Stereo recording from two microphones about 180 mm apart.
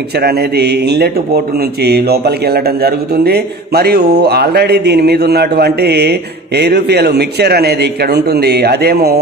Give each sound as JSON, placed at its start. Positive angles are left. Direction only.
{"t": 0.1, "sound": "speech", "side_deg": -60}